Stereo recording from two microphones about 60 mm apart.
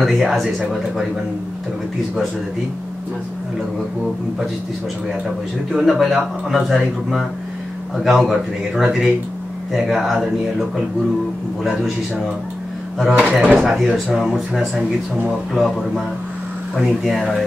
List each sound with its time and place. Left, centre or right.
0.0 s speech: centre
5.7 s a man's voice: centre
13.2 s a man's voice: centre
13.6 s speech: centre